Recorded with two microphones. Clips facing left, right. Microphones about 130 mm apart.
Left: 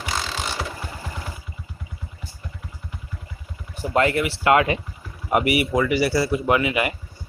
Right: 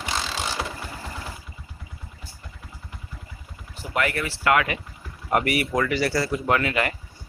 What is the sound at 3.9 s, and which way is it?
Speech, 25° left (ahead or behind).